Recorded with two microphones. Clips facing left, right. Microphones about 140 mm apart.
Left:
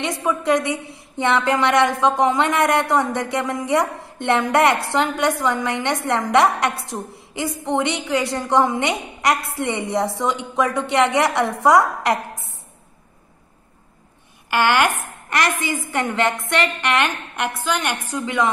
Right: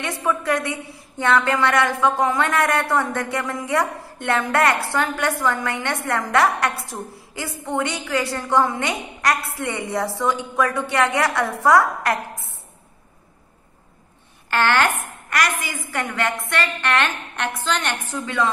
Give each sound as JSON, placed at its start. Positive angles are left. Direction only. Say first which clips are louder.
{"t": 0.0, "sound": "a woman's voice", "louder": "left 2 dB", "side_deg": 20}
{"t": 14.5, "sound": "a woman's voice", "louder": "left 2 dB", "side_deg": 15}
{"t": 15.2, "sound": "a woman's voice", "louder": "left 2 dB", "side_deg": 25}